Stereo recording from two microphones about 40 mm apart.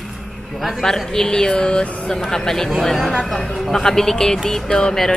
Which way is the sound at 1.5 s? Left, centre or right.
Left.